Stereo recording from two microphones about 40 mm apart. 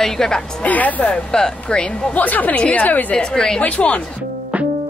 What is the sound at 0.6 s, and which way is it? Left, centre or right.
Speech, left.